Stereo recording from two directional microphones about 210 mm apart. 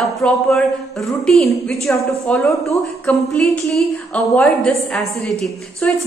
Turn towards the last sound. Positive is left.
turn(degrees=0)  # may be behind; listen again after turning